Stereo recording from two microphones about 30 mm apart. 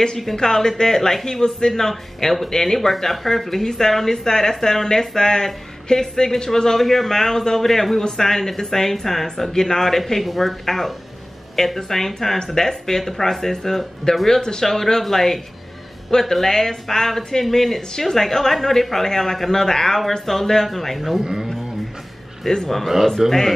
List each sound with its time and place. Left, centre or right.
0.4 s speech: centre
10.2 s speech: centre
14.1 s speech: left
14.7 s speech: centre
22.5 s speech: centre
23.2 s speech: right